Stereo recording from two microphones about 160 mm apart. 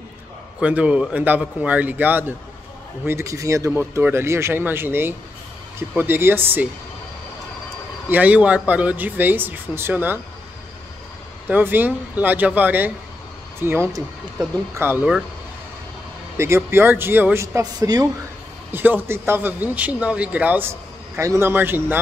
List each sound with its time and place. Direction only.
0.6 s speech: 10° right (ahead or behind)
8.1 s speech: 10° right (ahead or behind)
11.4 s speech: 10° right (ahead or behind)
16.3 s speech: 15° right (ahead or behind)
18.7 s speech: 10° right (ahead or behind)